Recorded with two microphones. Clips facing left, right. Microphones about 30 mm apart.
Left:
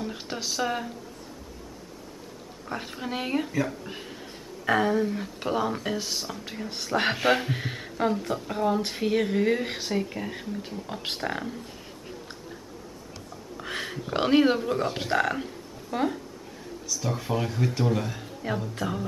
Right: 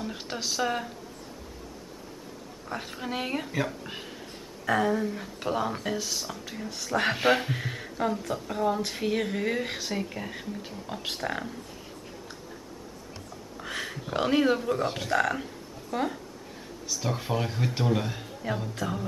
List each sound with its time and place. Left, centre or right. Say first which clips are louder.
0.0 s speech: left 1 dB; centre
2.7 s speech: left 1 dB; centre
4.6 s speech: left 2 dB; centre
7.2 s speech: even; centre
7.6 s speech: left 2 dB; centre
13.6 s a sound: left 1 dB; centre
14.1 s speech: left 3 dB; left
17.0 s speech: left 1 dB; centre
18.8 s speech: left 1 dB; centre